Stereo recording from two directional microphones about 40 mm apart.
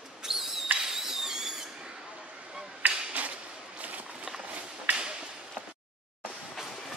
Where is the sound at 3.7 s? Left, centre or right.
Right.